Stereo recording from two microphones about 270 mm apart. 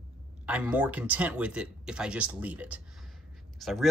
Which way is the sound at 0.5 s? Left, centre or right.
Centre.